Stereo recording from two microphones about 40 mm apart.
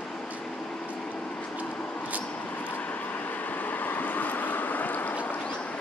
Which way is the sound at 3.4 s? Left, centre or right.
Left.